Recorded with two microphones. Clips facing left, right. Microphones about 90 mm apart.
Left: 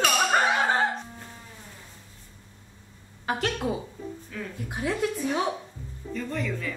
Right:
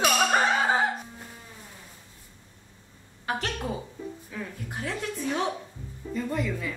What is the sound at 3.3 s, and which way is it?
Speech, centre (ahead or behind).